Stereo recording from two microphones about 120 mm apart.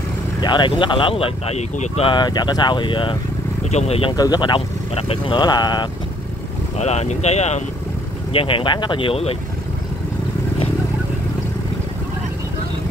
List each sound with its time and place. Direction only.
0.4 s speech: 40° left (ahead or behind); by 2.0 s 65° left (ahead or behind)
2.0 s speech: 35° left (ahead or behind)
3.7 s speech: 60° left (ahead or behind)
4.1 s speech: 35° left (ahead or behind)
6.8 s speech: 65° left (ahead or behind)
8.3 s speech: 50° left (ahead or behind)